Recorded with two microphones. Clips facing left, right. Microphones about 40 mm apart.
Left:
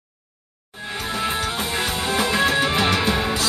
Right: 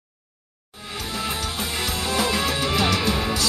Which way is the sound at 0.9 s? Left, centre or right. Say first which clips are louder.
Left 4 dB; left.